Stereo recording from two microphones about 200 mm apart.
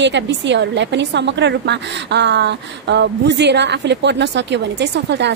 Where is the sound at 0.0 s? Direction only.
60° right (ahead or behind).